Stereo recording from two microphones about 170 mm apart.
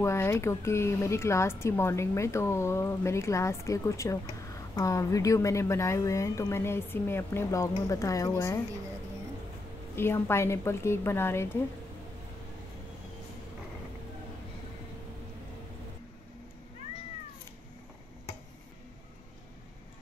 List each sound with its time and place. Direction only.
0.0 s speech: 15° left (ahead or behind)
9.9 s speech: 15° left (ahead or behind)